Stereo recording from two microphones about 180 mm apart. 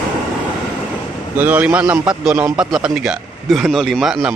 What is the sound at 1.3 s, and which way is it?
A man's voice, 10° right (ahead or behind).